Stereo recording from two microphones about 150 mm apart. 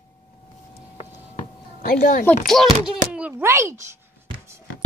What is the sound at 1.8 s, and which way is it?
Speech, 65° left (ahead or behind).